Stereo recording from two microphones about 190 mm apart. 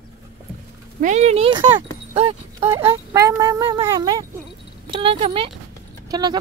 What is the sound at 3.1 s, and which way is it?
Speech, 20° right (ahead or behind).